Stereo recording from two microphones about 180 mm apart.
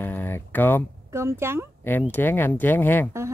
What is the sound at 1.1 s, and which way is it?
Speech, 15° right (ahead or behind).